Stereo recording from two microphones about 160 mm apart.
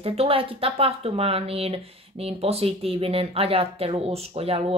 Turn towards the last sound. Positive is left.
turn(degrees=-40)  # may be behind; listen again after turning